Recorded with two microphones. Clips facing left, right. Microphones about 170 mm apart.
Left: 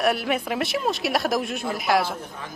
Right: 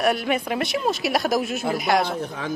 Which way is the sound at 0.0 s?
Centre (ahead or behind).